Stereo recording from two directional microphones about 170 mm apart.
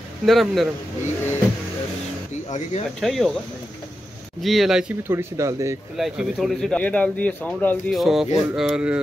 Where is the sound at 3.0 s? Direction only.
Centre (ahead or behind).